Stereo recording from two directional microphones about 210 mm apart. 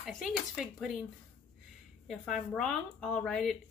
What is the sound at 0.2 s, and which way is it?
Speech, 5° right (ahead or behind).